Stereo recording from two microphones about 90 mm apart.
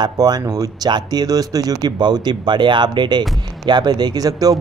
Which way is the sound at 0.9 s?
50° right (ahead or behind).